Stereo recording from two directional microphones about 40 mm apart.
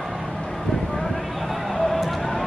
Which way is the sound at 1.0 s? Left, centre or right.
Centre.